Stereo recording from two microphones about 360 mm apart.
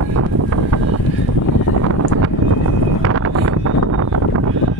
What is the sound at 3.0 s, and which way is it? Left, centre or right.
Wind noise, right.